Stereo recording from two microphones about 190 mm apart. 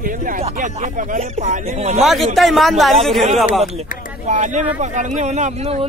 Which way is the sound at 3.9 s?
45° left (ahead or behind).